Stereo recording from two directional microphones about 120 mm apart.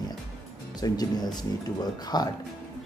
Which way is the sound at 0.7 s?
35° left (ahead or behind).